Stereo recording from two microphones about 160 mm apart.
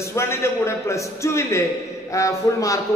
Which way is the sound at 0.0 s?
15° left (ahead or behind).